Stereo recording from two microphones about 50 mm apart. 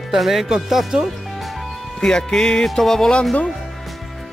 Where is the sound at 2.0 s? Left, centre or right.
Centre.